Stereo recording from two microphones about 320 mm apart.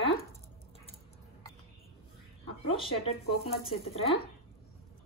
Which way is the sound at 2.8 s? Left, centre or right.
Centre.